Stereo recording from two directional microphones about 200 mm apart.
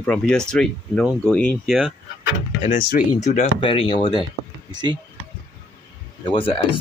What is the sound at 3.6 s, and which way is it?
Speech, 25° left (ahead or behind).